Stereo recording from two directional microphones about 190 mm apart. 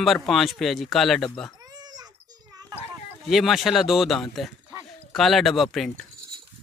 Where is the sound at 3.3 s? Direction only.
Centre (ahead or behind).